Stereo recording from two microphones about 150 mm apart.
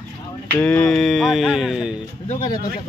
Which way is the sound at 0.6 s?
10° left (ahead or behind).